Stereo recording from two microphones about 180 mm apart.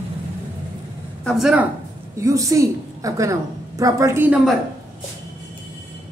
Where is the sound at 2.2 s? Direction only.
15° right (ahead or behind).